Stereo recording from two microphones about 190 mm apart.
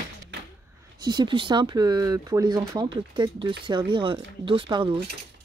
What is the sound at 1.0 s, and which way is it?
Speech, 25° right (ahead or behind).